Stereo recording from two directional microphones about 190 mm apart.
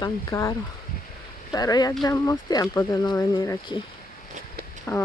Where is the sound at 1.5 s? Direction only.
20° left (ahead or behind).